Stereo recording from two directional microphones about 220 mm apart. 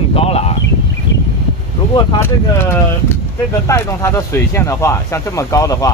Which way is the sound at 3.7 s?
15° left (ahead or behind).